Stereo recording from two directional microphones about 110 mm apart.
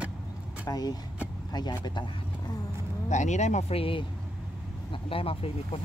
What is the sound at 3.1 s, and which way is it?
Speech, 90° left.